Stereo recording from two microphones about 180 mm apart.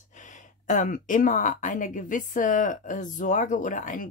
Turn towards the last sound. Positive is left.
turn(degrees=45)  # may be behind; listen again after turning